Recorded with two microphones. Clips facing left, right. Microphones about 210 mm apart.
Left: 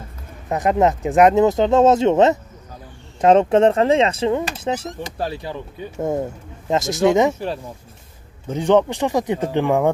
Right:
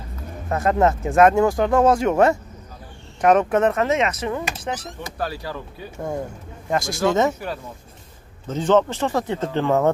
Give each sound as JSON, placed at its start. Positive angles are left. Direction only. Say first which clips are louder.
{"t": 0.5, "sound": "speech", "louder": "left 2 dB", "side_deg": 15}
{"t": 8.5, "sound": "speech", "louder": "left 2 dB", "side_deg": 15}